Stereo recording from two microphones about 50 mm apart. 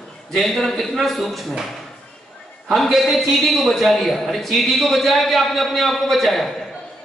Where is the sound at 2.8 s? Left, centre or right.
Centre.